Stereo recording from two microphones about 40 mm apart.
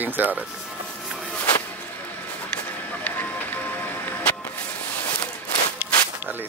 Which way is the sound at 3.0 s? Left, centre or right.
Left.